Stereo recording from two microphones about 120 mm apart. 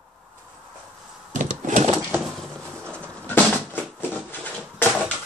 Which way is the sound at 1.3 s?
90° right.